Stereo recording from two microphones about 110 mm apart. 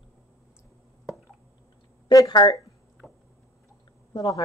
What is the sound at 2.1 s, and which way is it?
Speech, 35° left (ahead or behind).